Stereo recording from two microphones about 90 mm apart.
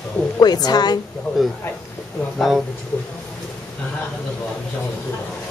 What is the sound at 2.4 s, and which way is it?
Speech, 5° right (ahead or behind).